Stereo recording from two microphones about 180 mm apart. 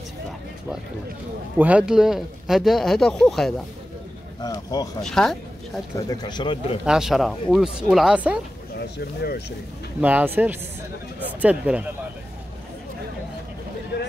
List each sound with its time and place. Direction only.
1.6 s speech: 5° right (ahead or behind)
4.4 s speech: 20° left (ahead or behind)
5.0 s speech: 5° left (ahead or behind)
5.9 s speech: 20° left (ahead or behind)
6.8 s speech: 5° right (ahead or behind)
8.9 s speech: 60° left (ahead or behind)
9.9 s speech: 10° right (ahead or behind)